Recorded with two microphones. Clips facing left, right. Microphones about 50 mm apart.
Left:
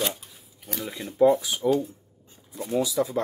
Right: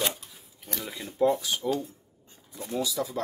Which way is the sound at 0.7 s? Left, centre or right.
Centre.